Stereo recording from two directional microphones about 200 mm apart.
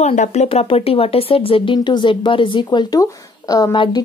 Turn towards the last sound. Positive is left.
turn(degrees=20)  # may be behind; listen again after turning